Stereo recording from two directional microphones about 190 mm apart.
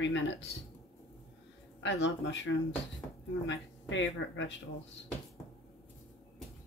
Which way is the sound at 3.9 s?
80° left.